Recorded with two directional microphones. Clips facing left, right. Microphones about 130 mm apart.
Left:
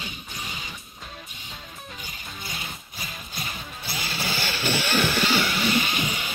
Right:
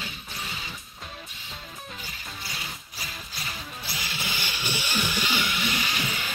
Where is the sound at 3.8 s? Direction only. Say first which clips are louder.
Left 5 dB; 30° left (ahead or behind).